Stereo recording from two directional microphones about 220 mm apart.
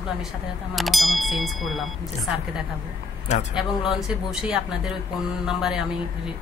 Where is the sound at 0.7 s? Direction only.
Centre (ahead or behind).